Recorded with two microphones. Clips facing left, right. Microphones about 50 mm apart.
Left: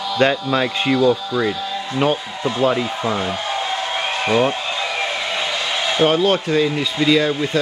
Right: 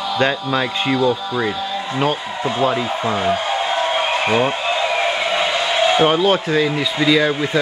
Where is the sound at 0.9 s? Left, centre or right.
Centre.